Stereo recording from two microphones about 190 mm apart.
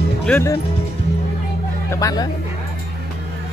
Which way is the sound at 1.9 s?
20° left (ahead or behind).